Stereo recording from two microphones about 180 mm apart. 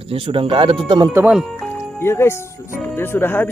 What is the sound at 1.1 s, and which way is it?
Speech, 10° right (ahead or behind).